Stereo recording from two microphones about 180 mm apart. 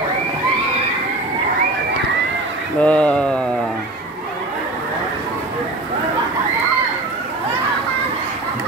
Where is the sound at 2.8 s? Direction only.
5° left (ahead or behind).